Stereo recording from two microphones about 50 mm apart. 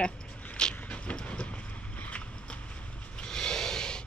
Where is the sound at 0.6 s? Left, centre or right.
Centre.